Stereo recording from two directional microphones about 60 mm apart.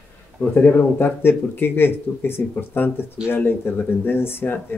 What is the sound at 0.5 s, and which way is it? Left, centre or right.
Speech, left.